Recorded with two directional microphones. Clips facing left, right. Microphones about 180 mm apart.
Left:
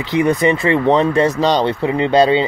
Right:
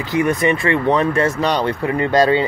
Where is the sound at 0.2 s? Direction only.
25° left (ahead or behind).